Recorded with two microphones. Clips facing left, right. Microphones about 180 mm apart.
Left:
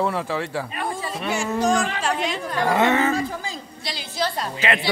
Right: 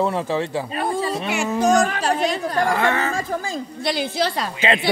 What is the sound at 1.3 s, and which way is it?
Speech, 60° right (ahead or behind).